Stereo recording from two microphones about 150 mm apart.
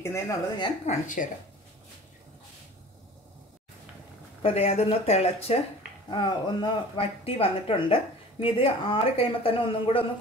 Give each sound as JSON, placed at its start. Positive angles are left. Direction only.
{"t": 0.0, "sound": "a woman's voice", "side_deg": 20}
{"t": 0.8, "sound": "speech", "side_deg": 60}
{"t": 4.4, "sound": "speech", "side_deg": 40}
{"t": 6.0, "sound": "speech", "side_deg": 30}